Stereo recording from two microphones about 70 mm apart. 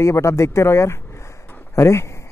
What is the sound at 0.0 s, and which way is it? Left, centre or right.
Speech, left.